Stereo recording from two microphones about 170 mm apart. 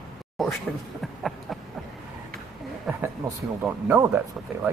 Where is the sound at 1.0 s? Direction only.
Centre (ahead or behind).